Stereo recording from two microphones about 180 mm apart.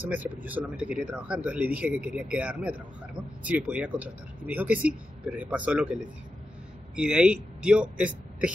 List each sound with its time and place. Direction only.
0.0 s a man's voice: 10° right (ahead or behind)